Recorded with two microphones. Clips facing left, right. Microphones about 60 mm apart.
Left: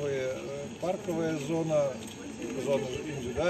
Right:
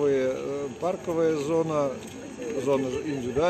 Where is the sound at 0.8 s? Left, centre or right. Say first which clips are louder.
Right 6 dB; right.